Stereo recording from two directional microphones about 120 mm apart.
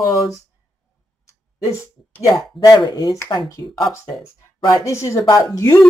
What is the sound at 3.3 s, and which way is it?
Speech, 45° left (ahead or behind).